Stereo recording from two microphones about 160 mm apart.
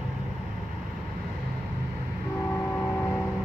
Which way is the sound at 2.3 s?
15° left (ahead or behind).